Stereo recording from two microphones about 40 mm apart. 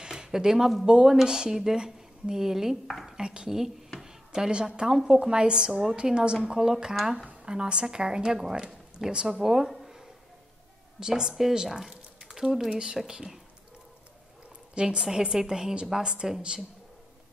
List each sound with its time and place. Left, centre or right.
0.0 s a sound: centre
1.0 s a woman's voice: centre
3.2 s a woman's voice: right
4.0 s a sound: centre
4.7 s a woman's voice: centre
11.0 s a woman's voice: centre
14.7 s a woman's voice: right
15.0 s a woman's voice: centre